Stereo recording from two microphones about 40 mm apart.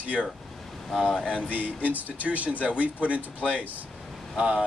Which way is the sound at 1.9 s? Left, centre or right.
Right.